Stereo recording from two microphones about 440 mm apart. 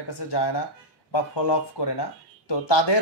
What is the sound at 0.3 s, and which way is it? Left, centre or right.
Speech, left.